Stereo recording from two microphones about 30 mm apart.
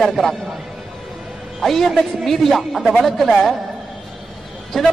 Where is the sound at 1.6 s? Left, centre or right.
Centre.